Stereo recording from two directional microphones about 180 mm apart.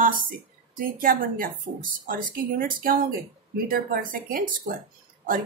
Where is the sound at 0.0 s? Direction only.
50° right (ahead or behind).